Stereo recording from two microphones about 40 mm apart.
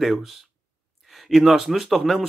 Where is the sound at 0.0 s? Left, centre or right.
Centre.